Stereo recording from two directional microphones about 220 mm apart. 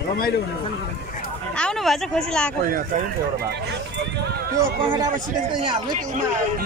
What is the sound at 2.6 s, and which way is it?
Speech, 40° right (ahead or behind).